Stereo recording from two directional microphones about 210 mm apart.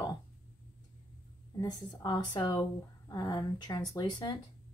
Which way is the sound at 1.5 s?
20° left (ahead or behind).